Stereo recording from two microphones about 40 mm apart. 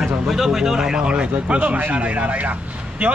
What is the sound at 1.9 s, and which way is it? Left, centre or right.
Speech, right.